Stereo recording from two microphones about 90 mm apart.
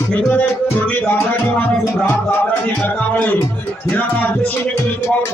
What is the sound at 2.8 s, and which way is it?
Music, 20° left (ahead or behind).